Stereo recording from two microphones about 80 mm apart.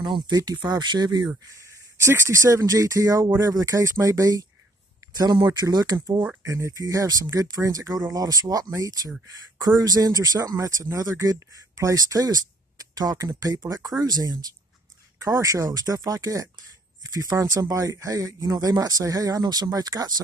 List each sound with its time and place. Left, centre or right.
0.0 s speech: right
0.4 s speech: right
1.7 s speech: right
5.1 s speech: right
5.9 s speech: right
15.1 s speech: right